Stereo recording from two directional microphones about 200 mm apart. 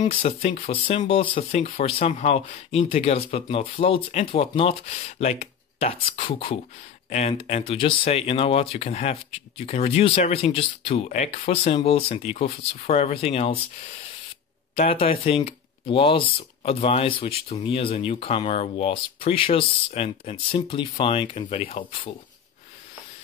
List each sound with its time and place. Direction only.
0.0 s speech: 30° left (ahead or behind)
14.8 s speech: 30° left (ahead or behind)